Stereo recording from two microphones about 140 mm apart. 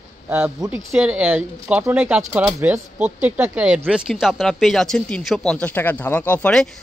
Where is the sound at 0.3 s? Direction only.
10° right (ahead or behind).